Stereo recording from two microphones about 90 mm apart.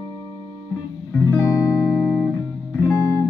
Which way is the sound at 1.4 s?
35° left (ahead or behind).